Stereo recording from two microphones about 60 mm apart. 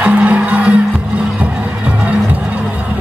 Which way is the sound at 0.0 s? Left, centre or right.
Right.